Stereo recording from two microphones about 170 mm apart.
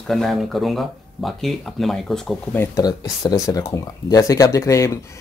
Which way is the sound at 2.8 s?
25° left (ahead or behind).